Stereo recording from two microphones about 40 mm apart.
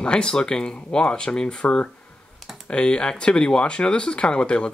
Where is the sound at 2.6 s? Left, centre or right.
Left.